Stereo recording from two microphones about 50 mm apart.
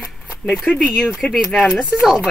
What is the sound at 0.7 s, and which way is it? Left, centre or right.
Speech, left.